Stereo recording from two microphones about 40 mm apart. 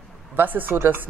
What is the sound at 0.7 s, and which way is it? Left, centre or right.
Speech, right.